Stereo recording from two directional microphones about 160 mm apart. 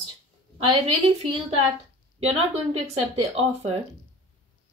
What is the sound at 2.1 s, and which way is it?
A woman's voice, 40° right (ahead or behind).